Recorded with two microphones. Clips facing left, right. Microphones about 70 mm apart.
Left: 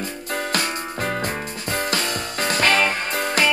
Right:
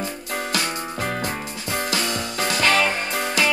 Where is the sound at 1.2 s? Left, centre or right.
Left.